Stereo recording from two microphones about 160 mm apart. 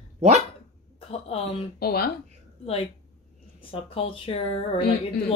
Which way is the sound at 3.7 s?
35° left (ahead or behind).